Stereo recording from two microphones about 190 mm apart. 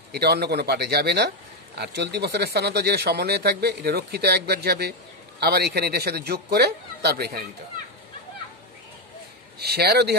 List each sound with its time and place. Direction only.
0.1 s speech: 55° right (ahead or behind)
9.6 s speech: 55° right (ahead or behind)